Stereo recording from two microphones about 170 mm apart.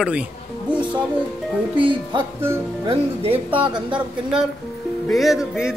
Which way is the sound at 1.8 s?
30° right (ahead or behind).